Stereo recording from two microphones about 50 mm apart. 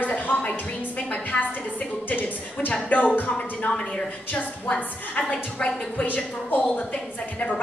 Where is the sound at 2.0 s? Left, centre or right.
Left.